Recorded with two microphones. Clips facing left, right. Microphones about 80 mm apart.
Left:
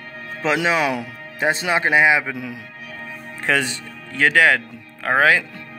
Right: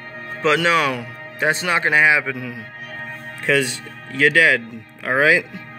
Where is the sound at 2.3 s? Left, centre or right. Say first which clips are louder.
Right 1 dB; centre.